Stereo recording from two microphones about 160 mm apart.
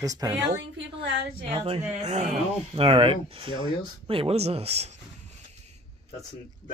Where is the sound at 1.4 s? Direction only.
35° right (ahead or behind).